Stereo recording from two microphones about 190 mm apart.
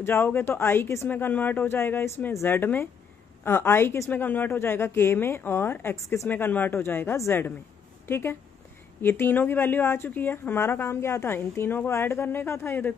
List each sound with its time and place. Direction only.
0.0 s a woman's voice: 10° left (ahead or behind)